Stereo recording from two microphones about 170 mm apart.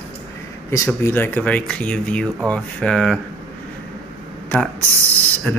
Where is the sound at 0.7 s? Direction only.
15° left (ahead or behind).